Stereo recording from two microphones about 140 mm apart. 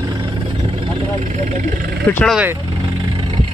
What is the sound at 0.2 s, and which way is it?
Vehicle, 35° right (ahead or behind).